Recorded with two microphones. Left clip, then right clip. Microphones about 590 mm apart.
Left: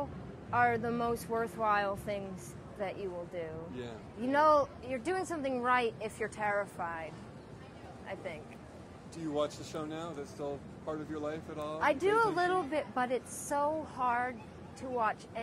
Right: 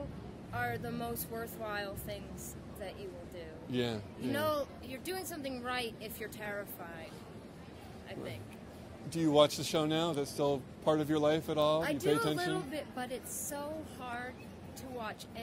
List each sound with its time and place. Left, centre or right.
0.5 s a woman's voice: left
4.3 s a woman's voice: left
9.1 s speech: right
11.8 s a woman's voice: left